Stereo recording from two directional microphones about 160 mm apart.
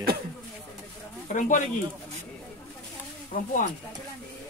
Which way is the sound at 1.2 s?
55° left (ahead or behind).